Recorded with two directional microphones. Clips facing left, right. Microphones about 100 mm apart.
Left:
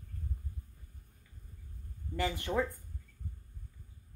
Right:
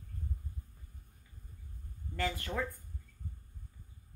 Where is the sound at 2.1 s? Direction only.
20° left (ahead or behind).